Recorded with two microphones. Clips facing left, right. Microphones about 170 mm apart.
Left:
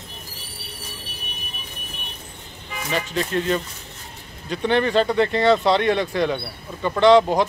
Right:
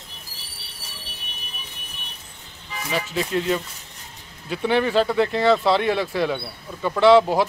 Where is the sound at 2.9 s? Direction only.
5° right (ahead or behind).